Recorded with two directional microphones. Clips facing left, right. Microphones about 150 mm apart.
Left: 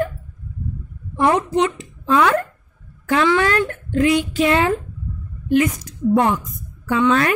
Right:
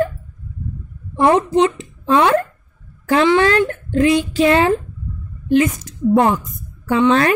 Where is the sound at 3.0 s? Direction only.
35° right (ahead or behind).